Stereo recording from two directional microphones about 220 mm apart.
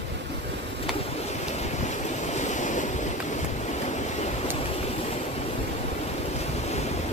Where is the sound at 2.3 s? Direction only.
35° left (ahead or behind).